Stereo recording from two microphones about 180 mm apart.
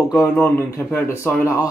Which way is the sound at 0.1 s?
15° left (ahead or behind).